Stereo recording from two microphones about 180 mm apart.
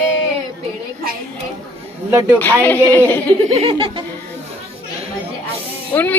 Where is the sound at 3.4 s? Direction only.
30° right (ahead or behind).